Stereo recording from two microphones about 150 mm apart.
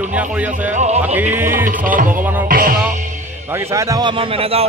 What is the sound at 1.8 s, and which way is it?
Music, 65° right (ahead or behind).